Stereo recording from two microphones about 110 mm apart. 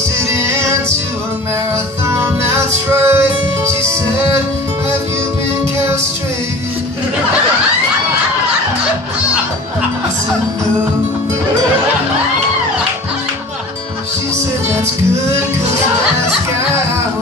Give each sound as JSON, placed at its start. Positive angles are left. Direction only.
{"t": 0.3, "sound": "music", "side_deg": -25}
{"t": 2.0, "sound": "music", "side_deg": -25}